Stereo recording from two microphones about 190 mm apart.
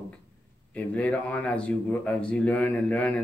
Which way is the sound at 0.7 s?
5° left (ahead or behind).